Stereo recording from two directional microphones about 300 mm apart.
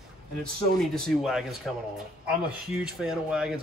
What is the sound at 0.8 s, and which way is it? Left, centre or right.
A man's voice, centre.